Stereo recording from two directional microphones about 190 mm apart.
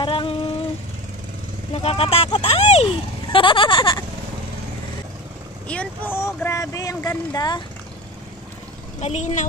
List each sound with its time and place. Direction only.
0.0 s vehicle: 25° left (ahead or behind)
1.7 s a sound: 30° left (ahead or behind)
5.7 s speech: 10° left (ahead or behind)
9.0 s speech: 35° left (ahead or behind)